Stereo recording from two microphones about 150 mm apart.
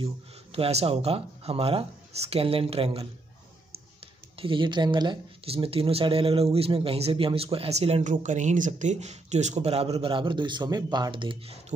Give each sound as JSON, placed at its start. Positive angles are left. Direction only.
{"t": 0.0, "sound": "speech", "side_deg": -40}
{"t": 4.4, "sound": "speech", "side_deg": -35}